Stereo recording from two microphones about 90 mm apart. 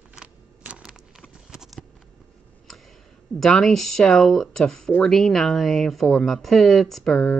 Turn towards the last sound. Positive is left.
turn(degrees=15)  # may be behind; listen again after turning